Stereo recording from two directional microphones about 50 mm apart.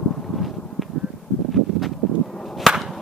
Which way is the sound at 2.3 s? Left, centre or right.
Centre.